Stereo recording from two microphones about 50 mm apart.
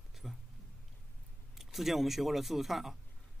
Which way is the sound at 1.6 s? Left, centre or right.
Centre.